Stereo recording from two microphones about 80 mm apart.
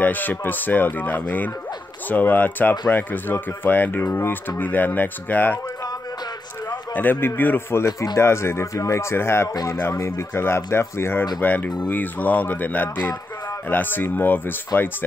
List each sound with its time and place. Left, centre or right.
0.0 s speech: left
6.7 s a man's voice: left